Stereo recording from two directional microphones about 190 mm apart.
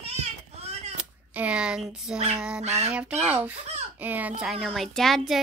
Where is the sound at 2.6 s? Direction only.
35° right (ahead or behind).